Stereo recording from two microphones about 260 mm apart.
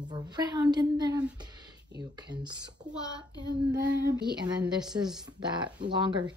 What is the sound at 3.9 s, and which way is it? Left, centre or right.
Speech, right.